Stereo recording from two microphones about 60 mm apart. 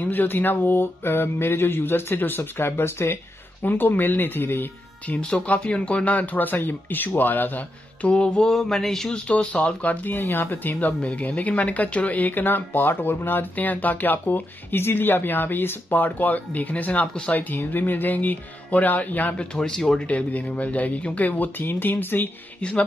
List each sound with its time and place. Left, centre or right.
0.0 s speech: left
3.6 s speech: left
5.2 s speech: centre; by 8.1 s left
8.1 s speech: centre
8.5 s a sound: centre
9.3 s speech: left
10.0 s speech: left
19.3 s speech: centre
20.1 s speech: left
22.6 s speech: centre